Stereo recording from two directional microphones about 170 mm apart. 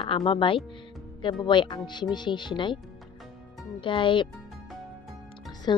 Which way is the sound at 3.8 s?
30° left (ahead or behind).